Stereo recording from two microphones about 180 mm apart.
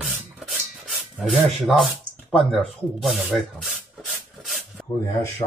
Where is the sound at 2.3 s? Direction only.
Centre (ahead or behind).